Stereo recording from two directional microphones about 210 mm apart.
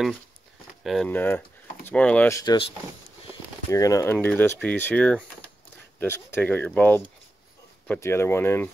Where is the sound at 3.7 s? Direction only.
15° left (ahead or behind).